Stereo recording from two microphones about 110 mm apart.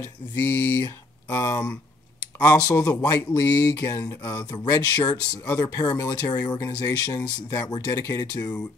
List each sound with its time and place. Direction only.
0.4 s speech: 25° left (ahead or behind)